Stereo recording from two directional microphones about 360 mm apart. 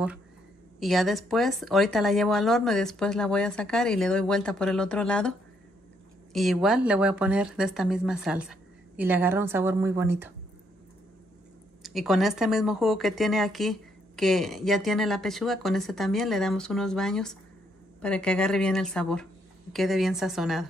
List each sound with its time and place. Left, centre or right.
0.7 s speech: centre
6.3 s speech: centre
11.8 s speech: centre